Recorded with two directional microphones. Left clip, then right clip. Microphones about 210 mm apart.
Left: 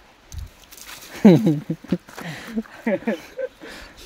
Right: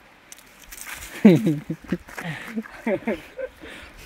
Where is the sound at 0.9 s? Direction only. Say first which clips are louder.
Left 2 dB; 10° left (ahead or behind).